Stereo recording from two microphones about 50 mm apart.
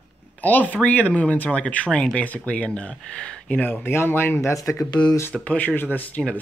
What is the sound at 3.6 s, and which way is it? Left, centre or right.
Speech, left.